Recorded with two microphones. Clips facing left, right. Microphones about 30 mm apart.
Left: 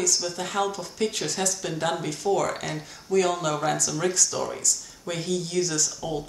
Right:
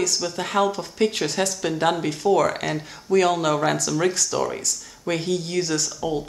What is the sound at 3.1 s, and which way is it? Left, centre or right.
Speech, right.